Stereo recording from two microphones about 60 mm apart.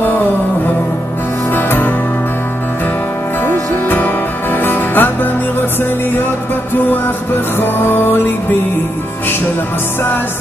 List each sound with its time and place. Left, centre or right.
1.5 s music: left
3.4 s music: left
7.5 s music: left